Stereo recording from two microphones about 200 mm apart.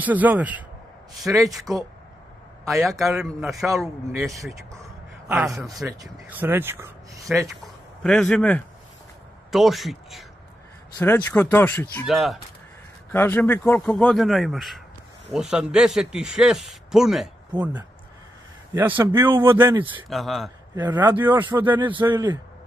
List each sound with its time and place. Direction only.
0.0 s speech: 10° right (ahead or behind)
3.0 s speech: centre (ahead or behind)
5.3 s speech: centre (ahead or behind)
5.9 s speech: 10° right (ahead or behind)
7.2 s speech: centre (ahead or behind)
13.1 s speech: 10° left (ahead or behind)
17.5 s a man's voice: 20° right (ahead or behind)
18.7 s speech: 10° right (ahead or behind)
19.6 s a man's voice: 25° right (ahead or behind)
20.1 s speech: centre (ahead or behind)
22.0 s a man's voice: 20° right (ahead or behind)